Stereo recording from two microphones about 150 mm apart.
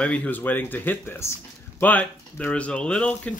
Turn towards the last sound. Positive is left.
turn(degrees=10)  # may be behind; listen again after turning